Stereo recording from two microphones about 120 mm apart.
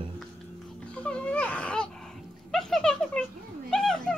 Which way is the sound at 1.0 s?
10° left (ahead or behind).